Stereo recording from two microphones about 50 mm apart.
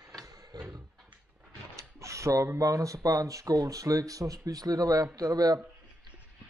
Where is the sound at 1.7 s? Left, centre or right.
Right.